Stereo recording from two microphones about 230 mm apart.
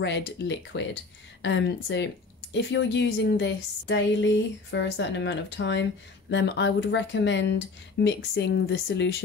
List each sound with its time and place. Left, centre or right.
0.0 s a woman's voice: left